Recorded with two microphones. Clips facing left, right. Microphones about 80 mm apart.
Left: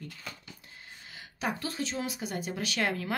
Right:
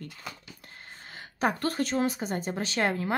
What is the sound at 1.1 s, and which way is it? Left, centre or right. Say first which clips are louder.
Speech: right 6 dB; right.